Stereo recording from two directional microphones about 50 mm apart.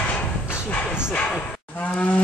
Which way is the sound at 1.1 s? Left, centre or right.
Left.